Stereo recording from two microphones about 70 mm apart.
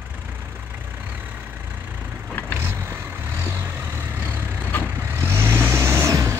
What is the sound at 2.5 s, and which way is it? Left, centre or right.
Vehicle, right.